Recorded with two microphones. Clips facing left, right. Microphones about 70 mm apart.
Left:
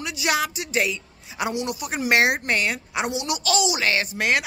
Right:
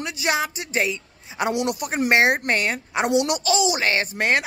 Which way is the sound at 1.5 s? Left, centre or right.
Right.